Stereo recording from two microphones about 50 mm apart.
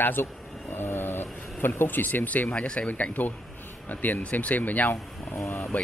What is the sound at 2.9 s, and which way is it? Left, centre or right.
Speech, left.